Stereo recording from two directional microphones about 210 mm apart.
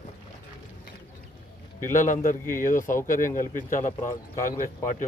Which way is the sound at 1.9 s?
35° left (ahead or behind).